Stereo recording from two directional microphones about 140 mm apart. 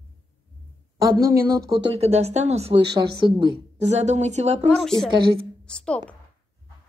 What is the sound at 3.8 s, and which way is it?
Speech, 55° right (ahead or behind).